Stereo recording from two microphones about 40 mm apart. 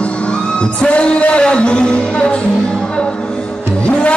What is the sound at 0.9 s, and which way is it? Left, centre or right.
Music, left.